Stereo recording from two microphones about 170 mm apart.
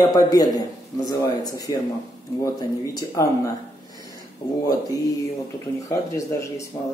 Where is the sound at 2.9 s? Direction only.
20° left (ahead or behind).